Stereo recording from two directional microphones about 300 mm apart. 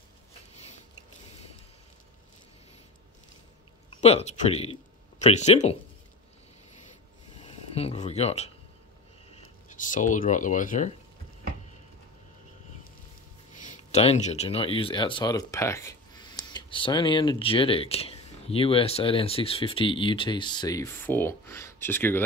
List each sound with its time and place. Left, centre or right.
3.9 s speech: left
7.4 s a sound: centre
9.3 s speech: left
13.6 s speech: left; by 22.2 s centre